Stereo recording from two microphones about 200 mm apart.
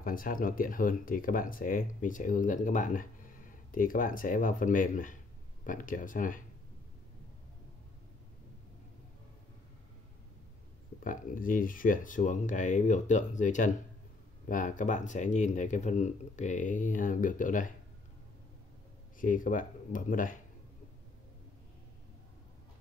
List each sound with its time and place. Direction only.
0.0 s speech: 45° left (ahead or behind)
11.1 s speech: 40° left (ahead or behind)
19.1 s speech: 40° left (ahead or behind)